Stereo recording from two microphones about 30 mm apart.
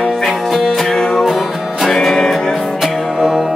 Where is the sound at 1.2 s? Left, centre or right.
Centre.